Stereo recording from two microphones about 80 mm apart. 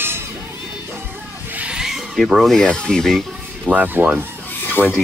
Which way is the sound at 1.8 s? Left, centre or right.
Centre.